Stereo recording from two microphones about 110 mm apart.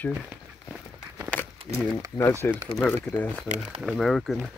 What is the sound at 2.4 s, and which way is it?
Speech, 20° left (ahead or behind).